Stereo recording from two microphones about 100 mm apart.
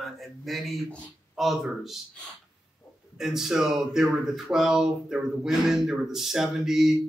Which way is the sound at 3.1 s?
5° right (ahead or behind).